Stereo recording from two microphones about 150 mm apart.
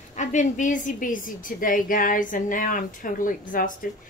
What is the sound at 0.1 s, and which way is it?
A woman's voice, 55° left (ahead or behind).